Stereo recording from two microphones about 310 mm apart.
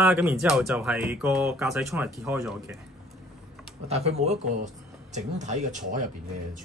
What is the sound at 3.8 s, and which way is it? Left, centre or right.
Speech, centre.